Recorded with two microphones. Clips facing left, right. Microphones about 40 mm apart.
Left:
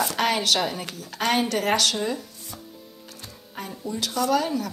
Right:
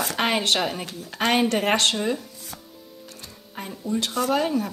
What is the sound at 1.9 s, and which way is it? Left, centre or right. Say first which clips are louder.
Speech: right 2 dB; centre.